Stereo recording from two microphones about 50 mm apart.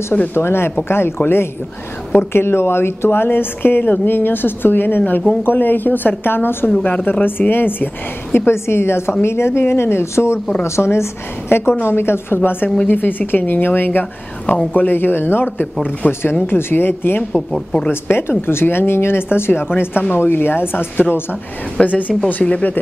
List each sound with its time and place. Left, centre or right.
0.3 s a woman's voice: left
6.8 s a woman's voice: left
14.4 s speech: left
16.1 s a woman's voice: left
17.2 s a woman's voice: centre
18.0 s a woman's voice: left
21.8 s speech: left